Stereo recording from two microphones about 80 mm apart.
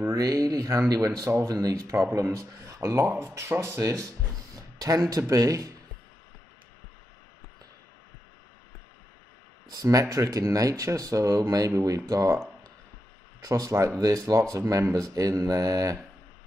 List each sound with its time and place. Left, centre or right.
0.2 s speech: right
3.8 s speech: right
9.8 s speech: right
13.4 s speech: right